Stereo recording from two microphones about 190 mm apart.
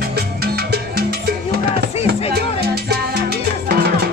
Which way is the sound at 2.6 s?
55° right (ahead or behind).